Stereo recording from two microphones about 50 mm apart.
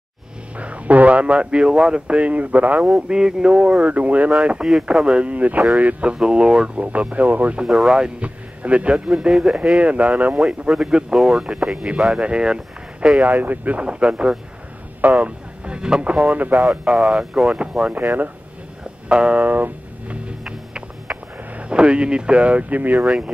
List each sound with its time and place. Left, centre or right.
0.6 s speech: right
2.9 s speech: centre
7.6 s speech: centre
8.2 s speech: right
9.8 s speech: right
10.7 s speech: centre
13.2 s speech: right
16.5 s speech: centre
19.0 s music: right
20.2 s music: centre
23.0 s speech: centre